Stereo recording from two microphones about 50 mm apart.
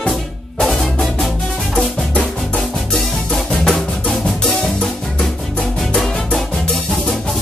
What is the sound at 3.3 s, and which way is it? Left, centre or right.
Music, centre.